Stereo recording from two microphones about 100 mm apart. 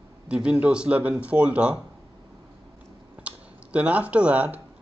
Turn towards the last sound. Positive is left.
turn(degrees=-15)  # may be behind; listen again after turning